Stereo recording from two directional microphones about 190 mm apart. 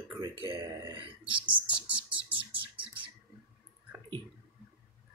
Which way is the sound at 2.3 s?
25° right (ahead or behind).